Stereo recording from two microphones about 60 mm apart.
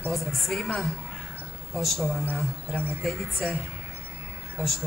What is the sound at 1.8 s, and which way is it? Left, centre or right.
Speech, centre.